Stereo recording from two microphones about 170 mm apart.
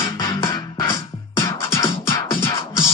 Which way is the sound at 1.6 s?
20° left (ahead or behind).